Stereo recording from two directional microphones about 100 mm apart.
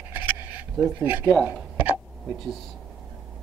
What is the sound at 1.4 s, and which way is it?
Speech, 5° right (ahead or behind).